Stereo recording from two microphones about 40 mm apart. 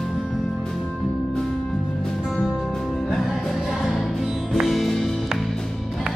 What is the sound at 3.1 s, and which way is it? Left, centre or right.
Music, centre.